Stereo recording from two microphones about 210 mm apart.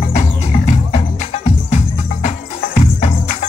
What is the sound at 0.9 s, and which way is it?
Music, 35° left (ahead or behind).